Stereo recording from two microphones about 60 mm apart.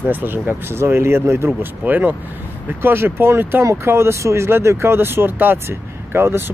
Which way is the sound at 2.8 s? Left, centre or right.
Right.